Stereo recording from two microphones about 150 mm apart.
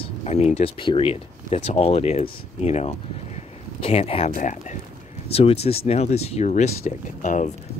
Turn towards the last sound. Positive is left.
turn(degrees=50)  # may be behind; listen again after turning